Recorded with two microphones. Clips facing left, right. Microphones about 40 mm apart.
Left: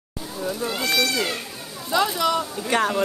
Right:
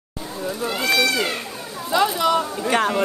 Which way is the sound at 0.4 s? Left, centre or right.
Centre.